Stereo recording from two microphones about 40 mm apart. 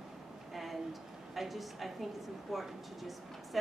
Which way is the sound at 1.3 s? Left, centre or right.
Centre.